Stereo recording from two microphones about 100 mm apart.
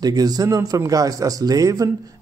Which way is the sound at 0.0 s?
40° right (ahead or behind).